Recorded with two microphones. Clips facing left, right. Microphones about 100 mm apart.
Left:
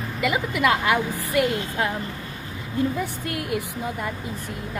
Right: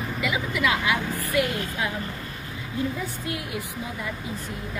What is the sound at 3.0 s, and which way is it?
A woman's voice, 55° left (ahead or behind).